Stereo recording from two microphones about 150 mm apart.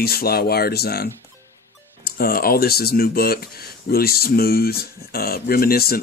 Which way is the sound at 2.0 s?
85° left.